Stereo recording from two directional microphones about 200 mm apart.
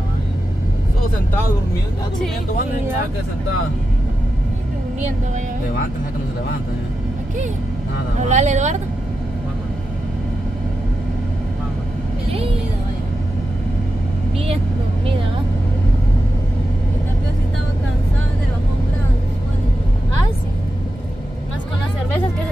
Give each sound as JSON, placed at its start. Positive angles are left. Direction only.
{"t": 8.2, "sound": "speech", "side_deg": -35}